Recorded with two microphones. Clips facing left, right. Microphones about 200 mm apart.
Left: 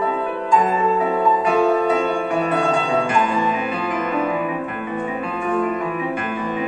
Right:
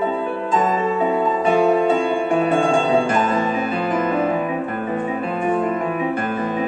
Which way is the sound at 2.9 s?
40° right (ahead or behind).